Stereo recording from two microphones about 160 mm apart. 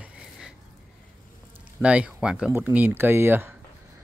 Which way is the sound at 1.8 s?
5° right (ahead or behind).